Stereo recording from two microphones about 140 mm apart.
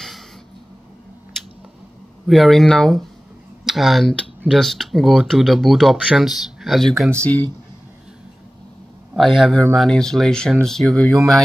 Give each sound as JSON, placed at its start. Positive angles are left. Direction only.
{"t": 1.3, "sound": "a sound", "side_deg": 0}
{"t": 2.2, "sound": "speech", "side_deg": 0}
{"t": 9.1, "sound": "speech", "side_deg": 0}